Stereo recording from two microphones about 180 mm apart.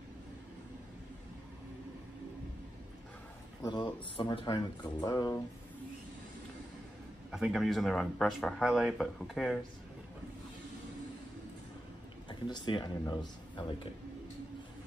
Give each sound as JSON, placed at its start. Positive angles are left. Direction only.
{"t": 3.6, "sound": "speech", "side_deg": 25}
{"t": 7.2, "sound": "speech", "side_deg": 0}
{"t": 12.3, "sound": "speech", "side_deg": 25}